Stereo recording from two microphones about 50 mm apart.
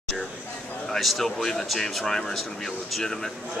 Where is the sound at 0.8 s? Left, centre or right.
Centre.